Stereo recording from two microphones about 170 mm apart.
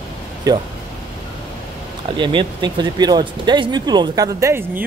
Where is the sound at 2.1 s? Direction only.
30° right (ahead or behind).